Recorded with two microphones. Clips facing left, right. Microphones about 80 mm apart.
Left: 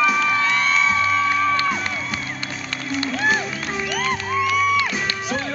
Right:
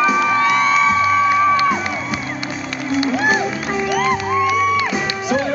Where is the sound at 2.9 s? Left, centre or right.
Centre.